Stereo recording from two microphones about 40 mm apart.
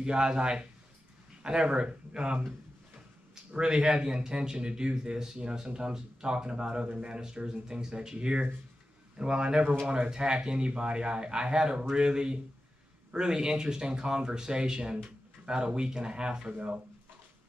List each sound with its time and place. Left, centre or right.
0.0 s speech: right
3.5 s speech: right
16.5 s speech: right